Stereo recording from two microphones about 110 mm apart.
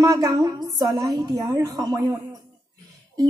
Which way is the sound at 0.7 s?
35° right (ahead or behind).